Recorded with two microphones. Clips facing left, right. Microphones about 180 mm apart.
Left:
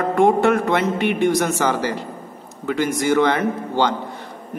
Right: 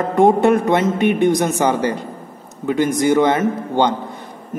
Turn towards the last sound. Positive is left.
turn(degrees=-20)  # may be behind; listen again after turning